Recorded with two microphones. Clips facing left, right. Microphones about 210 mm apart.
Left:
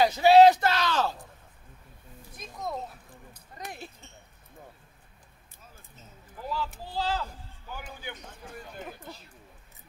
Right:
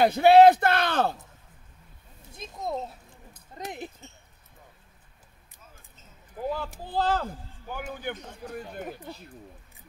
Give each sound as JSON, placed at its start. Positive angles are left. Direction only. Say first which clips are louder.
{"t": 0.0, "sound": "speech", "louder": "right 2 dB", "side_deg": -55}
{"t": 2.3, "sound": "a sound", "louder": "right 3 dB", "side_deg": -25}
{"t": 3.5, "sound": "speech", "louder": "right 5 dB", "side_deg": -20}
{"t": 6.4, "sound": "speech", "louder": "right 3 dB", "side_deg": -55}